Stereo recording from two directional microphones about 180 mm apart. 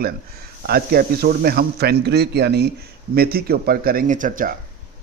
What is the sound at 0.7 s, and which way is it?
A man's voice, 60° right (ahead or behind).